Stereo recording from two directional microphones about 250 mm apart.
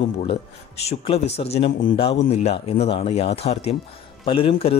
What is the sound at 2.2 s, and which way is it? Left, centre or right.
A man's voice, left.